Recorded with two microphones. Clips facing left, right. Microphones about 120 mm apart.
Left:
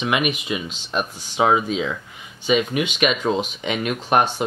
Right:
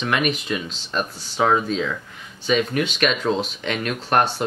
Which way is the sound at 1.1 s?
40° right (ahead or behind).